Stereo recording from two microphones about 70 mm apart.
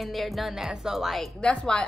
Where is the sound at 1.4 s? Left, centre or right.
Centre.